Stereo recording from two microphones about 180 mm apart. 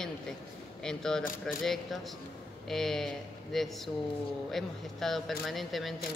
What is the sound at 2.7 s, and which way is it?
Speech, centre (ahead or behind).